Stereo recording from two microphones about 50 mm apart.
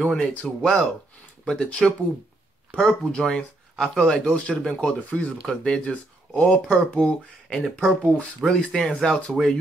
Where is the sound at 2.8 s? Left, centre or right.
Centre.